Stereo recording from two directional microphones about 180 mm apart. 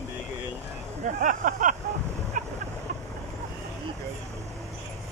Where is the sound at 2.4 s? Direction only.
45° right (ahead or behind).